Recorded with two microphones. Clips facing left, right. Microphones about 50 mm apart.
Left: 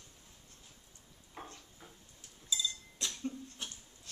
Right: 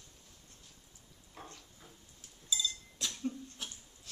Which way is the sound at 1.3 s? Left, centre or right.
Centre.